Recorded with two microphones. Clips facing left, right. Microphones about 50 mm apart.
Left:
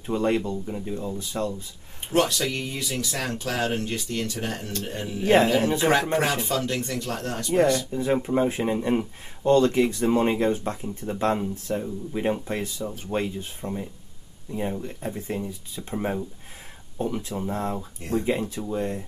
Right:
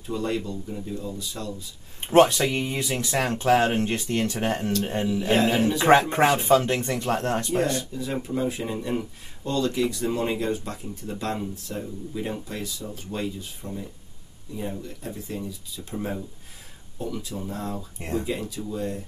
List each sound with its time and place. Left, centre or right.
0.0 s speech: left
2.0 s speech: right
5.0 s speech: left
5.8 s speech: right
7.9 s speech: left